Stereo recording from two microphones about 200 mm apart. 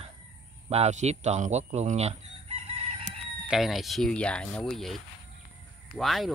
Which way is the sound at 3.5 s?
Centre (ahead or behind).